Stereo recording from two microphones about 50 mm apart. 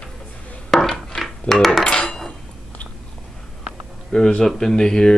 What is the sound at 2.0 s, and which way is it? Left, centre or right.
Dishes, centre.